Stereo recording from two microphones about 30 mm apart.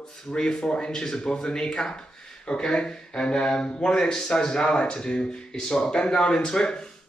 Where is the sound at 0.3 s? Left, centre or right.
Left.